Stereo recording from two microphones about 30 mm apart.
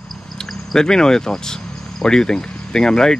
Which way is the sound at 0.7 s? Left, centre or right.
Left.